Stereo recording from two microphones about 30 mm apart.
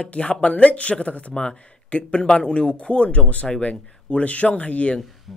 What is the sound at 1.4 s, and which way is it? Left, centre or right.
Speech, left.